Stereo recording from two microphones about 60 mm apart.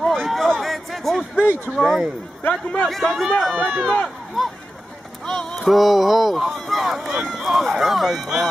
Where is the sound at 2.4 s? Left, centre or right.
Left.